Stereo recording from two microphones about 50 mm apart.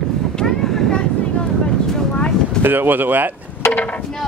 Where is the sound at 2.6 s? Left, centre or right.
Right.